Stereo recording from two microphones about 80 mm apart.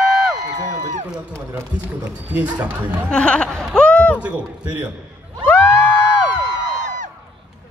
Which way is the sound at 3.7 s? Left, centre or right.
Centre.